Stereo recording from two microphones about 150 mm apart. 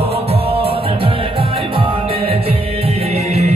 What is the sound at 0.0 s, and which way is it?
Music, 40° right (ahead or behind).